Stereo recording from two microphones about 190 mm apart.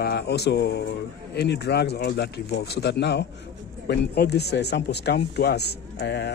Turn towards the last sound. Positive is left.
turn(degrees=60)  # may be behind; listen again after turning